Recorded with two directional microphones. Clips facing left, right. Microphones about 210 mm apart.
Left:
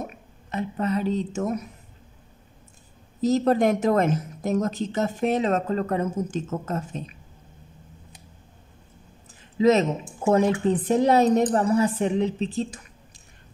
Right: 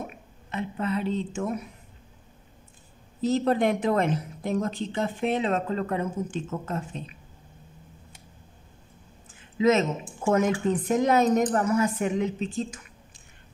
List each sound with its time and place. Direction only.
0.0 s speech: 40° left (ahead or behind)
3.2 s speech: 40° left (ahead or behind)
9.6 s speech: 35° left (ahead or behind)